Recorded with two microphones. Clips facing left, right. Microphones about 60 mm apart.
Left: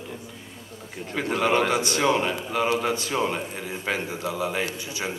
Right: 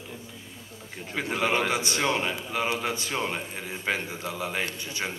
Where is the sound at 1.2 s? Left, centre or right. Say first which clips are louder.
Left 4 dB; centre.